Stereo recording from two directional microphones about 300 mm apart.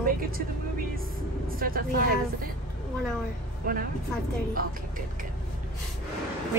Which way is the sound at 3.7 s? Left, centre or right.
Right.